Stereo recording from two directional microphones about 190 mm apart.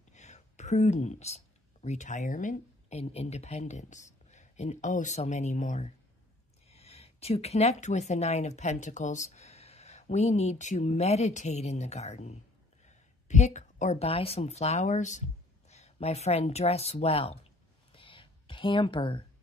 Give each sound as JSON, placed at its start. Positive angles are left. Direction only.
{"t": 0.1, "sound": "a woman's voice", "side_deg": 40}
{"t": 17.9, "sound": "whispering", "side_deg": 25}